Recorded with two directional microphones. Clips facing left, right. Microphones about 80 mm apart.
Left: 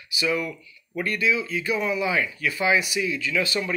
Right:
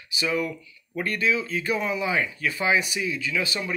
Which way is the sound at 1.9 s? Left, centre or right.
Right.